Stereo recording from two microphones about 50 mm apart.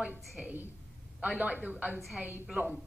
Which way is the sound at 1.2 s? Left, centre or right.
Right.